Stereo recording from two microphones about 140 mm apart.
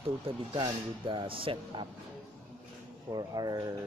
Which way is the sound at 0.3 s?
40° right (ahead or behind).